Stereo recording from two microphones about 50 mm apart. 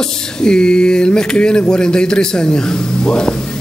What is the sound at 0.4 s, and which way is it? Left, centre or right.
Speech, centre.